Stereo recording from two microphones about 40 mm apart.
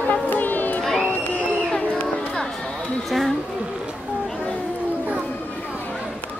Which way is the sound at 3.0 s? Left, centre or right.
Centre.